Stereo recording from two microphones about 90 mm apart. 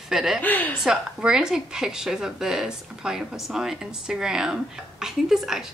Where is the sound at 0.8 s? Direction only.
10° right (ahead or behind).